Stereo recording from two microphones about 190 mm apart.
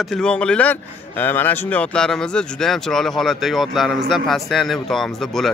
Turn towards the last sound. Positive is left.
turn(degrees=0)  # may be behind; listen again after turning